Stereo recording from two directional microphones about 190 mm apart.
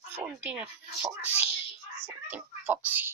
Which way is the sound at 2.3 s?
10° right (ahead or behind).